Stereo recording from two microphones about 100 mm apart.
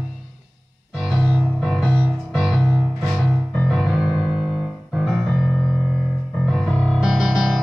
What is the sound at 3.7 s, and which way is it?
Music, centre (ahead or behind).